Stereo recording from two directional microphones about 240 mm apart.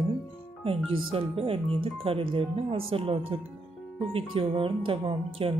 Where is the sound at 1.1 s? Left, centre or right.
Right.